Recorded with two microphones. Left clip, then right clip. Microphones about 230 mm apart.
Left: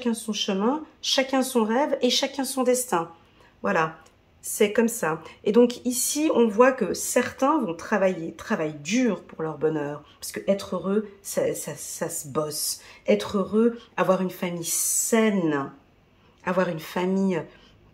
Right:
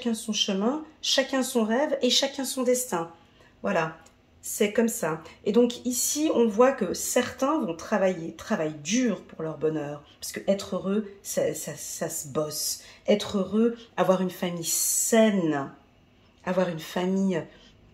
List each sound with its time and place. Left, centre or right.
0.0 s speech: centre